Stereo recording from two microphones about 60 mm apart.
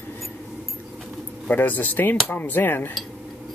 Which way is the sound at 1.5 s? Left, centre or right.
Left.